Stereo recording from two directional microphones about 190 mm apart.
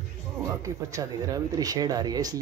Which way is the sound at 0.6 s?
15° right (ahead or behind).